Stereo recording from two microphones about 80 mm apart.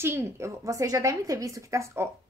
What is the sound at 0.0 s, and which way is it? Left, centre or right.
Speech, right.